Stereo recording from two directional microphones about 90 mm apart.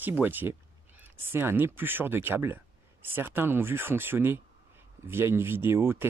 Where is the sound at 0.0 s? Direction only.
20° right (ahead or behind).